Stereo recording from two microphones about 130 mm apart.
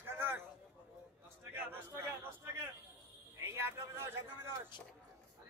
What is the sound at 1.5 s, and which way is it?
A man's voice, 15° right (ahead or behind).